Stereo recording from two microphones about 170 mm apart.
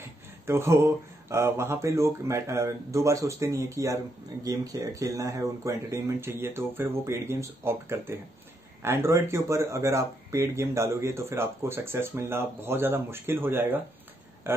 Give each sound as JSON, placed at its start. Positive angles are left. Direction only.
{"t": 0.5, "sound": "speech", "side_deg": -15}